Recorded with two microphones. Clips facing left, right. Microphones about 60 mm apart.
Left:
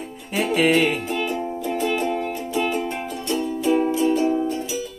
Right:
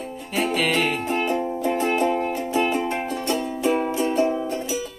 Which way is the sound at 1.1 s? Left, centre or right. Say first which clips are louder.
Right 2 dB; right.